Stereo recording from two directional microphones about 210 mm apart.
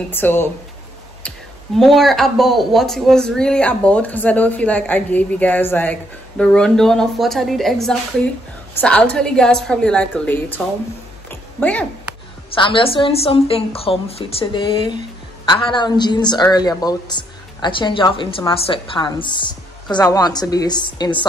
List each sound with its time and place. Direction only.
0.1 s speech: 10° left (ahead or behind)
11.2 s a sound: 5° left (ahead or behind)
12.5 s a woman's voice: 25° left (ahead or behind)